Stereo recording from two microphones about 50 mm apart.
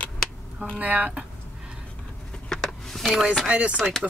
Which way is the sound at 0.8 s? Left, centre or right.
Right.